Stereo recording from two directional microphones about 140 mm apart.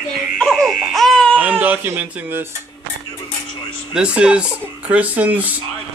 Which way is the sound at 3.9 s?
5° right (ahead or behind).